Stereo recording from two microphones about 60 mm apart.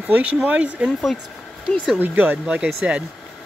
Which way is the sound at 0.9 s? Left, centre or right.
Centre.